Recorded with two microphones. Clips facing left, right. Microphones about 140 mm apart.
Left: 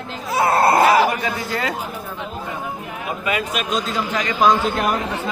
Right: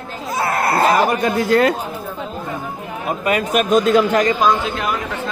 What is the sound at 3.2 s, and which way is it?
A man's voice, 45° right (ahead or behind).